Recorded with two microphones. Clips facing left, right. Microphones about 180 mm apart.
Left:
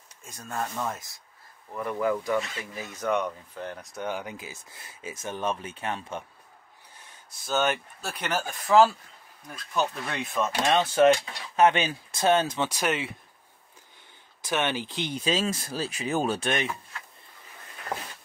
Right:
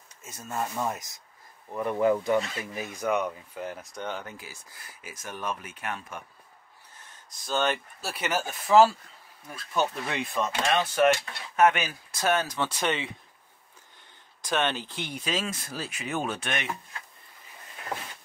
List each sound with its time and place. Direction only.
0.2 s speech: 5° right (ahead or behind); by 6.2 s 25° left (ahead or behind)
7.4 s speech: 5° left (ahead or behind)
10.5 s speech: 30° left (ahead or behind)
12.6 s speech: 10° left (ahead or behind)
14.4 s speech: 5° left (ahead or behind); by 16.6 s 35° left (ahead or behind)